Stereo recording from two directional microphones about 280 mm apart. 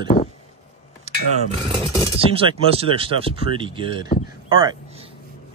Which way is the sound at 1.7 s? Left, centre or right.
Centre.